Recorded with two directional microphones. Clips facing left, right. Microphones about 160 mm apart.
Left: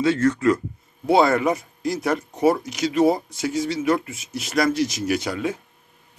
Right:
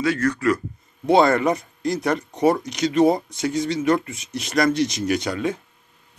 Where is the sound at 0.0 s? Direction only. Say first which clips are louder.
Left 2 dB; 25° left (ahead or behind).